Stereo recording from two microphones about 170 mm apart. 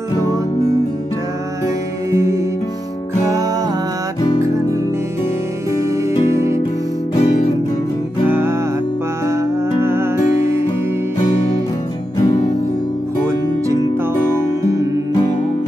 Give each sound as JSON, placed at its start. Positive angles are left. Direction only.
{"t": 2.0, "sound": "music", "side_deg": -15}
{"t": 6.3, "sound": "music", "side_deg": -15}
{"t": 7.2, "sound": "music", "side_deg": 40}
{"t": 8.3, "sound": "music", "side_deg": -10}